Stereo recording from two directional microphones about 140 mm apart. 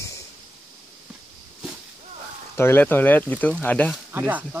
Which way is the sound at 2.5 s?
15° left (ahead or behind).